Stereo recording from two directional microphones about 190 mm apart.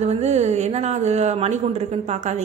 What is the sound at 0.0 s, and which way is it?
Speech, 35° right (ahead or behind).